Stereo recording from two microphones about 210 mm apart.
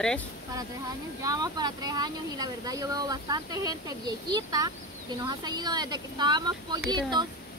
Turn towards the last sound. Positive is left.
turn(degrees=-20)  # may be behind; listen again after turning